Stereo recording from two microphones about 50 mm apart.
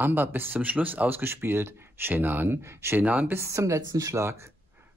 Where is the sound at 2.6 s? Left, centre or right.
Right.